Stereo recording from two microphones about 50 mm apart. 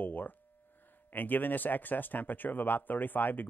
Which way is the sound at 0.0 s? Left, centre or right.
Left.